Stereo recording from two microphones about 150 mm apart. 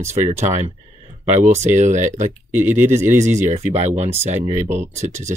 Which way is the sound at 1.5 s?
50° right (ahead or behind).